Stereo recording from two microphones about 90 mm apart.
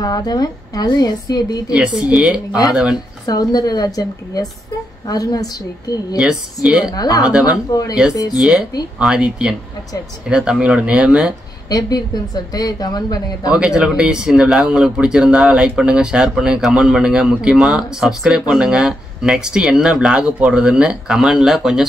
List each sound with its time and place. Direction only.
0.0 s a woman's voice: 50° left (ahead or behind)
1.7 s speech: 10° right (ahead or behind)
3.3 s a woman's voice: 45° left (ahead or behind)
6.1 s speech: 10° right (ahead or behind)
6.9 s a woman's voice: 45° left (ahead or behind)
7.2 s speech: 10° right (ahead or behind)
7.7 s a woman's voice: 45° left (ahead or behind)
8.4 s speech: 5° right (ahead or behind)
12.5 s a woman's voice: 45° left (ahead or behind)
13.5 s speech: 10° right (ahead or behind)